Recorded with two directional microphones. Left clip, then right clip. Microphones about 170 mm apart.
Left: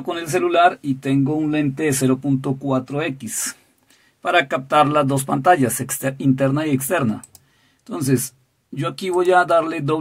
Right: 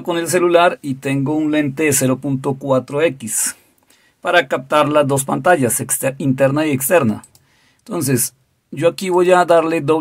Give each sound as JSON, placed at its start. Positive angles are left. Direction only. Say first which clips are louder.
{"t": 0.0, "sound": "speech", "louder": "right 5 dB", "side_deg": -35}